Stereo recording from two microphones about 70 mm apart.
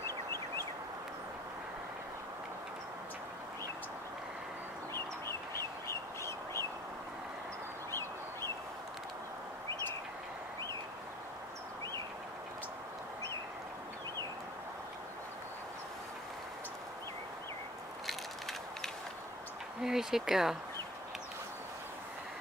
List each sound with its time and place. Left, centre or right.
0.0 s fowl: left
4.9 s bird: left
18.0 s a sound: centre
19.8 s speech: centre